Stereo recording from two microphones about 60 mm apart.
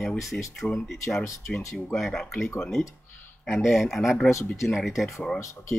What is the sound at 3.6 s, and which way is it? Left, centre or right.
Speech, centre.